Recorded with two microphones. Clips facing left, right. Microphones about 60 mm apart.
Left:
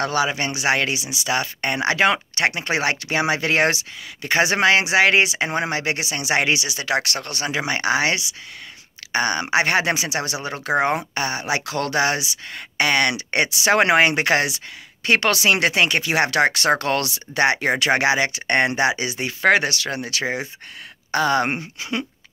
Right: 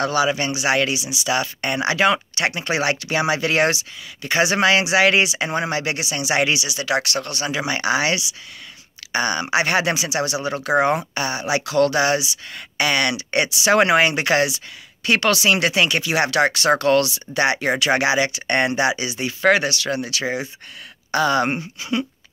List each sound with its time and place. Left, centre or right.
0.0 s speech: left
21.7 s speech: left